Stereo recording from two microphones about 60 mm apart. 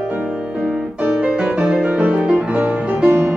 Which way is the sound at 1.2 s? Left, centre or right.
Centre.